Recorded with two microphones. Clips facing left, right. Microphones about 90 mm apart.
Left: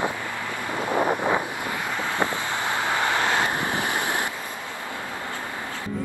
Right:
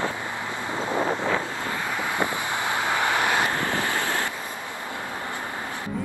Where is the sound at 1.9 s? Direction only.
15° right (ahead or behind).